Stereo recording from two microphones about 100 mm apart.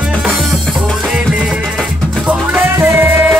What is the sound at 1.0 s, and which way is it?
Music, 10° right (ahead or behind).